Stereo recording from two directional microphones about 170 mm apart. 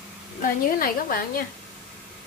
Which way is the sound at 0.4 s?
55° left (ahead or behind).